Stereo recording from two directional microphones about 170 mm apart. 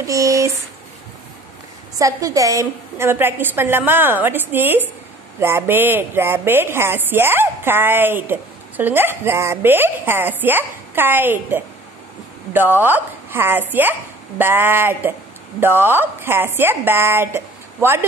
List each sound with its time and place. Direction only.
0.0 s speech: 20° right (ahead or behind)
2.0 s a woman's voice: 20° right (ahead or behind)